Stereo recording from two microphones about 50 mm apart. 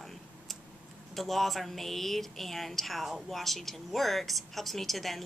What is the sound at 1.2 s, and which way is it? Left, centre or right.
Speech, centre.